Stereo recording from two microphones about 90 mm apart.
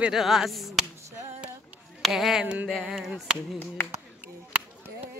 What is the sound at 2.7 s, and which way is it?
Speech, centre (ahead or behind).